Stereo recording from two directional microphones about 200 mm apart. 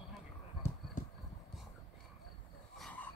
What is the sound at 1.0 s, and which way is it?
Clip-clop, 40° left (ahead or behind).